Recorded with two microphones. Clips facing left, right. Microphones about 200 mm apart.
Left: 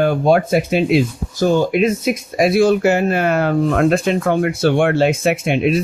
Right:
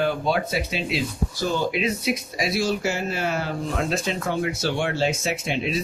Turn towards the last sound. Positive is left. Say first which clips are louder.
# left 10 dB
turn(degrees=60)  # may be behind; listen again after turning